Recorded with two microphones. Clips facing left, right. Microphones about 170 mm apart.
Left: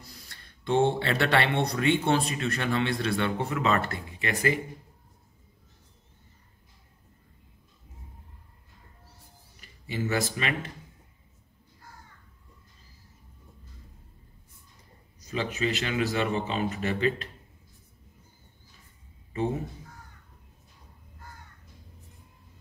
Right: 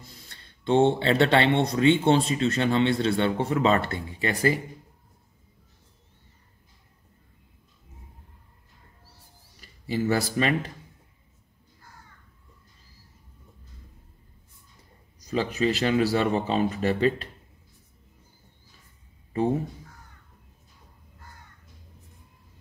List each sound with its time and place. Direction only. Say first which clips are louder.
0.0 s speech: right 1 dB; 25° right (ahead or behind)
9.6 s speech: right 5 dB; 35° right (ahead or behind)
15.2 s a man's voice: right 5 dB; 35° right (ahead or behind)